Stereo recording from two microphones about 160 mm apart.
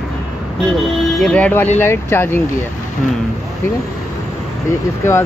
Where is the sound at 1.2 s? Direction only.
10° left (ahead or behind).